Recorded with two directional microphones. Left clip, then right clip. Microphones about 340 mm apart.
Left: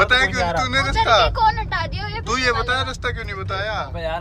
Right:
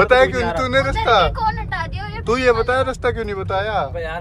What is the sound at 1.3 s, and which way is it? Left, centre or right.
Speech, left.